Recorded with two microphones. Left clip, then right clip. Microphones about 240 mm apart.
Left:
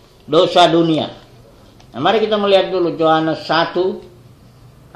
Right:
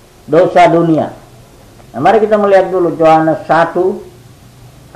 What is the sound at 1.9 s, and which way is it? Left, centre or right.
A man's voice, centre.